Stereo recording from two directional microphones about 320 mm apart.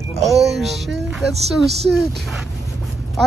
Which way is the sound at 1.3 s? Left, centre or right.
Centre.